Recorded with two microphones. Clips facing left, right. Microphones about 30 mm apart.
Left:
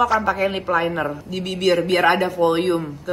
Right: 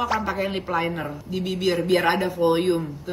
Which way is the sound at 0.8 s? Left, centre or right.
Left.